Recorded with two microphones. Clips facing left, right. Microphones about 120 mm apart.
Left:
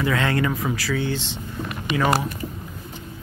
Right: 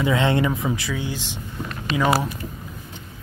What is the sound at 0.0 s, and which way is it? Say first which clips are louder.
Speech: right 2 dB; 20° right (ahead or behind).